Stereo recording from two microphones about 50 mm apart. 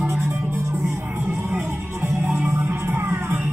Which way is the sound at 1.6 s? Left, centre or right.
Right.